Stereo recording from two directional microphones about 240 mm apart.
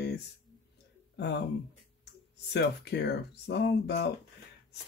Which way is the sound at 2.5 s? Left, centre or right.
Left.